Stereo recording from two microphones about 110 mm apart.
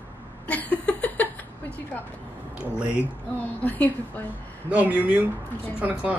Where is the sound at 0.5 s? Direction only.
15° left (ahead or behind).